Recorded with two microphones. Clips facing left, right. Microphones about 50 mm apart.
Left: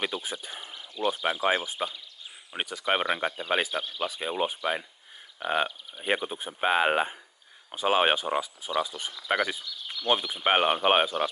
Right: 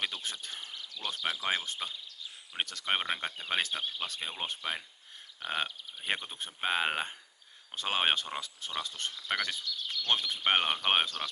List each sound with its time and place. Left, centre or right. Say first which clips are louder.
0.0 s speech: left 5 dB; centre
5.4 s speech: left 7 dB; centre